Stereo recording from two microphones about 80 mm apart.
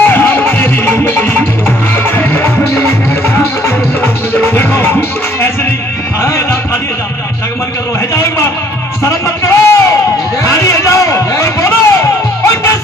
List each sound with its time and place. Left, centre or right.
0.0 s music: left
4.6 s music: left
9.0 s a sound: left